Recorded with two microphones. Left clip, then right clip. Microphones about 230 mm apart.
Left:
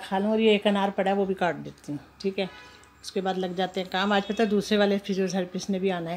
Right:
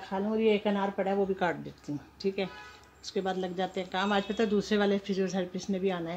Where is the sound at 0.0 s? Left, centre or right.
Centre.